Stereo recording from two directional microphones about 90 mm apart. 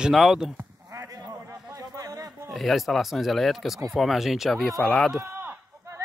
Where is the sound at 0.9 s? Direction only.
40° right (ahead or behind).